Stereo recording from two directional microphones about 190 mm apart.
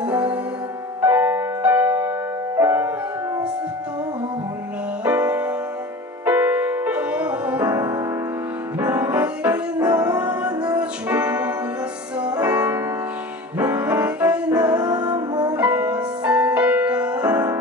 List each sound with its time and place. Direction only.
1.0 s music: 10° right (ahead or behind)
5.0 s music: 10° right (ahead or behind)
14.8 s music: 20° right (ahead or behind)
15.5 s music: 10° right (ahead or behind)